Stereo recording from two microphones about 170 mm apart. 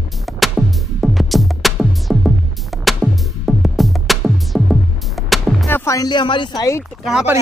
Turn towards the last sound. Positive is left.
turn(degrees=-5)  # may be behind; listen again after turning